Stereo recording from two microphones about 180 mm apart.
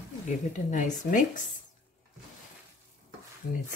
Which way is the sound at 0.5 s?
45° left (ahead or behind).